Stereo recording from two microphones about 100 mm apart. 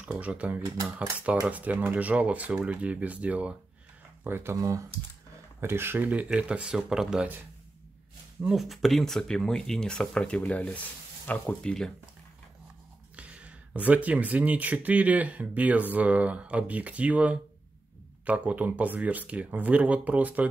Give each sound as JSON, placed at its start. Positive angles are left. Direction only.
{"t": 0.0, "sound": "speech", "side_deg": -10}
{"t": 8.5, "sound": "speech", "side_deg": 0}
{"t": 13.1, "sound": "speech", "side_deg": -10}